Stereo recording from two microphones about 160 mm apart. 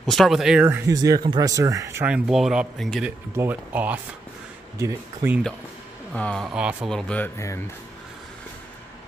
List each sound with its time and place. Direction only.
0.0 s speech: centre (ahead or behind)
0.9 s speech: 25° right (ahead or behind)
6.1 s speech: 5° left (ahead or behind)
6.9 s speech: 5° left (ahead or behind)
7.3 s speech: 20° left (ahead or behind)